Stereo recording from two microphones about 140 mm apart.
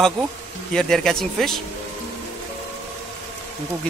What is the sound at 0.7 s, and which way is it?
Speech, 5° left (ahead or behind).